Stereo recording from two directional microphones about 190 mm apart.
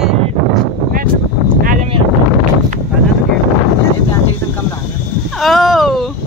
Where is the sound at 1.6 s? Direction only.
45° right (ahead or behind).